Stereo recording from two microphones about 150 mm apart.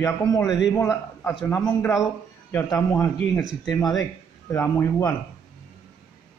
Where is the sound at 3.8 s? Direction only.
25° left (ahead or behind).